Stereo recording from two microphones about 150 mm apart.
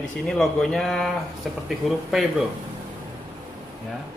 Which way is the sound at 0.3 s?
5° left (ahead or behind).